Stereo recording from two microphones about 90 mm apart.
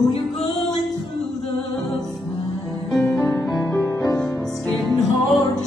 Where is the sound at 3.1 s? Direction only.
45° left (ahead or behind).